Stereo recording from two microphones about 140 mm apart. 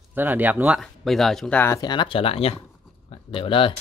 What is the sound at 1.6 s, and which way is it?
Speech, 25° left (ahead or behind).